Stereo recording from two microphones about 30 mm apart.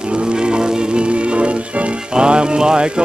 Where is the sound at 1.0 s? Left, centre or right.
Right.